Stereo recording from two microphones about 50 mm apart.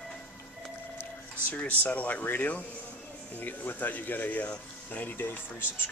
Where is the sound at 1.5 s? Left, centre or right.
Left.